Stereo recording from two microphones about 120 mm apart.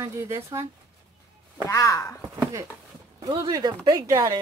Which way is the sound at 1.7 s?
25° left (ahead or behind).